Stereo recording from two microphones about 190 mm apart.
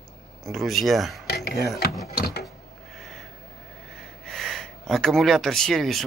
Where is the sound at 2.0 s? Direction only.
55° left (ahead or behind).